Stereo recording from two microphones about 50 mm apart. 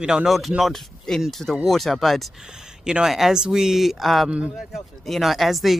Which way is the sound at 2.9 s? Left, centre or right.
Centre.